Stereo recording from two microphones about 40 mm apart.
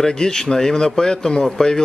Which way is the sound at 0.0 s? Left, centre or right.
Centre.